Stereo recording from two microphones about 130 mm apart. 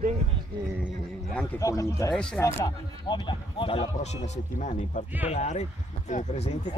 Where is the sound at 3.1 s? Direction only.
40° left (ahead or behind).